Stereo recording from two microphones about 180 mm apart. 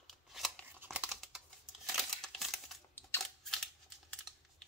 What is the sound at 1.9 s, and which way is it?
Crumpling, centre (ahead or behind).